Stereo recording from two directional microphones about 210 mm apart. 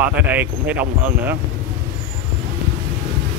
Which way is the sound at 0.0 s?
10° right (ahead or behind).